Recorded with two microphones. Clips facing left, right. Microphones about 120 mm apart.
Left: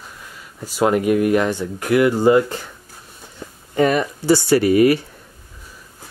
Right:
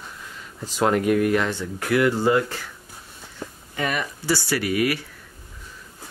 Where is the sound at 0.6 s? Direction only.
10° left (ahead or behind).